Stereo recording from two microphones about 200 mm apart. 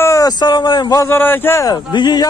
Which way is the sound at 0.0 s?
15° left (ahead or behind).